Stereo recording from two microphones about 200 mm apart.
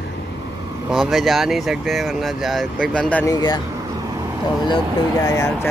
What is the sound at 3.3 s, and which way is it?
Speech, 20° left (ahead or behind).